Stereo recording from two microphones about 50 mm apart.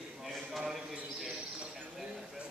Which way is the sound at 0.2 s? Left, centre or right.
Centre.